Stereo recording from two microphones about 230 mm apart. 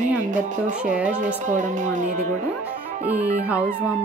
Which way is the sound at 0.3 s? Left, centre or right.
Right.